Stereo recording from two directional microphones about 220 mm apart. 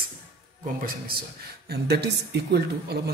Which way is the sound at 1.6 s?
45° right (ahead or behind).